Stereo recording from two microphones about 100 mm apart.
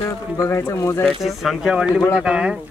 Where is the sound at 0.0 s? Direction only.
30° left (ahead or behind).